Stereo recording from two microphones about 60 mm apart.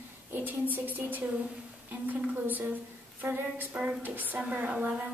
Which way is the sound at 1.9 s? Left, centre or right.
Right.